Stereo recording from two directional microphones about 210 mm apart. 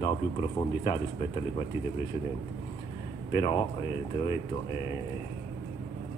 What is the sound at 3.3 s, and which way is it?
Speech, 25° left (ahead or behind).